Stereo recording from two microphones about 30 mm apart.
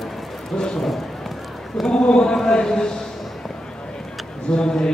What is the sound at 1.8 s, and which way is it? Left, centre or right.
A man's voice, left.